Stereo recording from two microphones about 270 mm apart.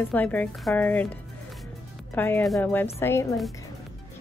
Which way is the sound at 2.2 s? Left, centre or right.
Centre.